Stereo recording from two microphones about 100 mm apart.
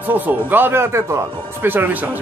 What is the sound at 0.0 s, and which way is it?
Speech, 20° right (ahead or behind).